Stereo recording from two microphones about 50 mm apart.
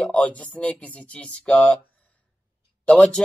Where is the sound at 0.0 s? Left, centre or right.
Left.